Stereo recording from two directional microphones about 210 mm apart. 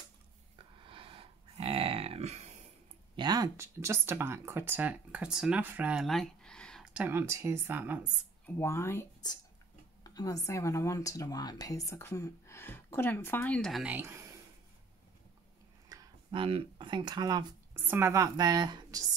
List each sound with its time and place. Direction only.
0.8 s a sound: 25° right (ahead or behind)
3.2 s speech: 20° right (ahead or behind)
8.5 s speech: 10° left (ahead or behind); by 14.3 s 10° right (ahead or behind)
15.9 s speech: 20° right (ahead or behind)